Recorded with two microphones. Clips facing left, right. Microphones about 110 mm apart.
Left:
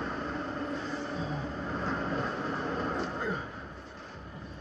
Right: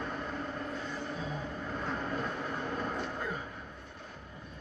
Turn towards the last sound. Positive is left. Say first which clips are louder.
# left 3 dB
turn(degrees=30)  # may be behind; listen again after turning